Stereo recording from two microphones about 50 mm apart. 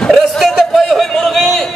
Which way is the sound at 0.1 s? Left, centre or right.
Centre.